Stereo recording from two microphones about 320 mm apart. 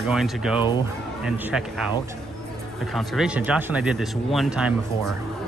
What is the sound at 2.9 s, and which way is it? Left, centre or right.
Speech, centre.